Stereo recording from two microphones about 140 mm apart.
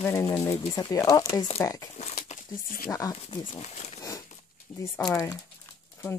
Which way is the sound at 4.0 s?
25° left (ahead or behind).